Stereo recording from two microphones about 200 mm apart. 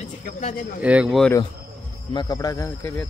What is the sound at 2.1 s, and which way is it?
Speech, 20° left (ahead or behind).